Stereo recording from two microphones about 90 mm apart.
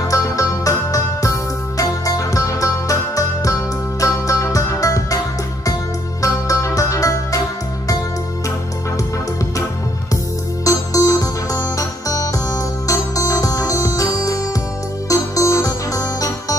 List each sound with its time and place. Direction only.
0.1 s music: 35° left (ahead or behind)
6.2 s music: 35° left (ahead or behind)
10.6 s music: 40° left (ahead or behind)